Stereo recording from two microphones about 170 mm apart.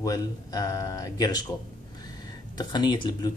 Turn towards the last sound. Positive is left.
turn(degrees=25)  # may be behind; listen again after turning